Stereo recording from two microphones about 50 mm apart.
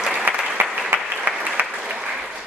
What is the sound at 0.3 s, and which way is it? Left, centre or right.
Applause, right.